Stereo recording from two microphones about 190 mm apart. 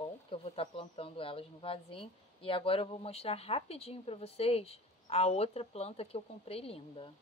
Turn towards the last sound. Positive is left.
turn(degrees=30)  # may be behind; listen again after turning